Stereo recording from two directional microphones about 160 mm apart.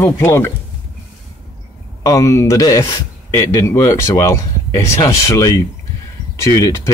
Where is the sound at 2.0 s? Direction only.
20° left (ahead or behind).